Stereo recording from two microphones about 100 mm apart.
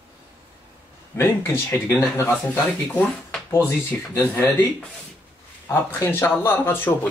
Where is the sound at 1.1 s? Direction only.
25° left (ahead or behind).